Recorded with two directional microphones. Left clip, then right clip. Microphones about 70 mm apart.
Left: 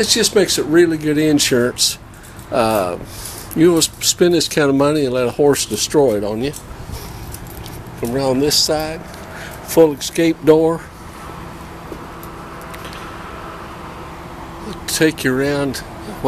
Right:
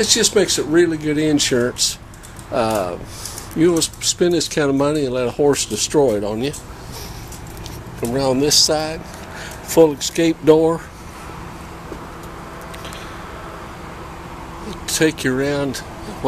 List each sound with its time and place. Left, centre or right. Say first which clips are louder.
0.0 s speech: left 1 dB; centre
8.1 s speech: even; centre
14.7 s a sound: left 2 dB; centre